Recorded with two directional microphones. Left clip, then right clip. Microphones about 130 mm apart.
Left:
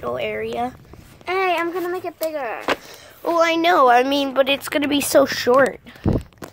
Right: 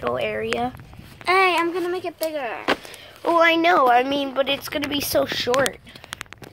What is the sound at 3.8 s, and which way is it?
Speech, 70° left (ahead or behind).